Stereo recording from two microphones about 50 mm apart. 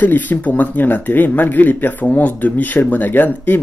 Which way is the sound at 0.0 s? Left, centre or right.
Left.